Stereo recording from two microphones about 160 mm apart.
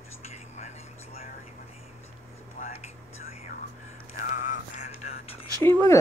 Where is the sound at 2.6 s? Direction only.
40° left (ahead or behind).